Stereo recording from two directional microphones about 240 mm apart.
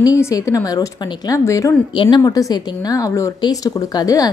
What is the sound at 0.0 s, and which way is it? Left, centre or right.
A woman's voice, centre.